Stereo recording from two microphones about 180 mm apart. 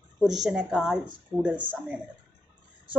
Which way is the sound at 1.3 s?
25° right (ahead or behind).